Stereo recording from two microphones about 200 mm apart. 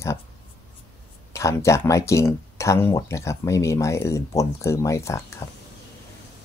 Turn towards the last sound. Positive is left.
turn(degrees=30)  # may be behind; listen again after turning